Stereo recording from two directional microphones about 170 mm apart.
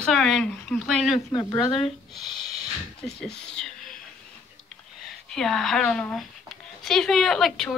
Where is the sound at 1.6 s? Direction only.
30° left (ahead or behind).